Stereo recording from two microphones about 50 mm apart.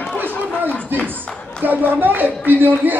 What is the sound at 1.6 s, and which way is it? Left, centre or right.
A woman's voice, right.